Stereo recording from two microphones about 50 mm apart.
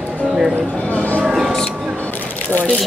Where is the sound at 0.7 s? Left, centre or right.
Left.